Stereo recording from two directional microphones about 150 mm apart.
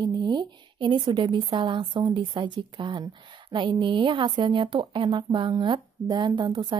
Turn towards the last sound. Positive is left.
turn(degrees=-30)  # may be behind; listen again after turning